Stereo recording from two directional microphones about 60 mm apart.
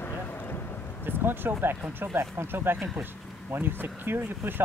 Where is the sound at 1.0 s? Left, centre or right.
Right.